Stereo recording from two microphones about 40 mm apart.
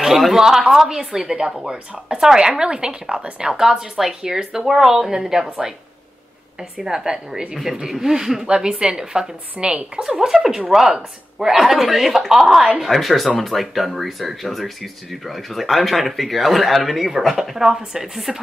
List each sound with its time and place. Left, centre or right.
0.2 s a woman's voice: centre
6.8 s a woman's voice: centre